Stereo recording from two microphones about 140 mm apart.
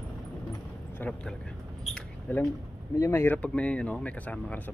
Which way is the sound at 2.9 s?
20° left (ahead or behind).